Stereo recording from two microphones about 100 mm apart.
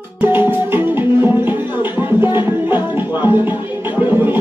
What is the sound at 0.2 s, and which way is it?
Music, 20° right (ahead or behind).